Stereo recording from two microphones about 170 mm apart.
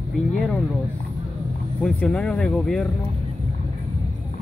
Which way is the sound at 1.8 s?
5° left (ahead or behind).